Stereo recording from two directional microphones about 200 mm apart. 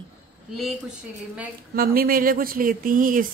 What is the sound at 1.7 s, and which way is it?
Speech, 45° right (ahead or behind).